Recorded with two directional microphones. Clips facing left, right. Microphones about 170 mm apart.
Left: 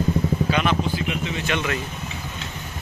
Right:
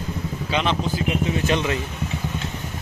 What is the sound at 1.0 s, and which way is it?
Vehicle, 40° right (ahead or behind).